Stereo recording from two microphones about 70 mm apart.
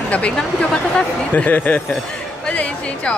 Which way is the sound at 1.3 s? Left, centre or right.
Left.